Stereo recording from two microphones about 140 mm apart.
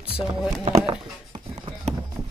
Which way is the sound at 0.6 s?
40° right (ahead or behind).